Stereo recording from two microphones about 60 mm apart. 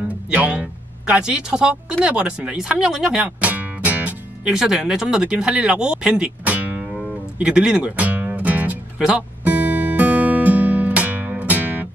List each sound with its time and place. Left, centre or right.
0.1 s speech: right
2.7 s speech: centre
3.4 s music: right
4.5 s speech: centre; by 6.9 s right
7.3 s music: centre